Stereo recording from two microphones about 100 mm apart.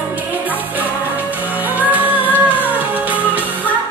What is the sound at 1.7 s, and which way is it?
Music, 15° right (ahead or behind).